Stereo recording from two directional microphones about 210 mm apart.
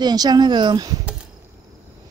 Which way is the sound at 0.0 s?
20° right (ahead or behind).